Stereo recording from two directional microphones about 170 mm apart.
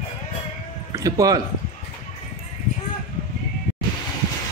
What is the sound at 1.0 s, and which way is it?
Speech, 20° right (ahead or behind).